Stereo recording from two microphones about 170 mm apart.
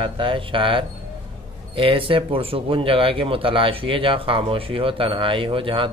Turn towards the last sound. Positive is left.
turn(degrees=-30)  # may be behind; listen again after turning